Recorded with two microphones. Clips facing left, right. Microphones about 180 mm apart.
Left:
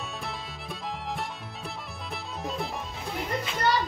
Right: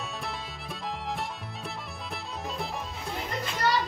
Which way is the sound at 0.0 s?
Centre (ahead or behind).